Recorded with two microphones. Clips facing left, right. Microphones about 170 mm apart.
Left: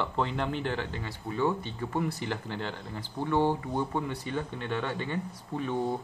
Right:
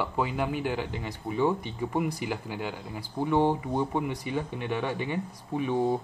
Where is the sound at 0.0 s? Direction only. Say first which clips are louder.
Right 1 dB; 10° right (ahead or behind).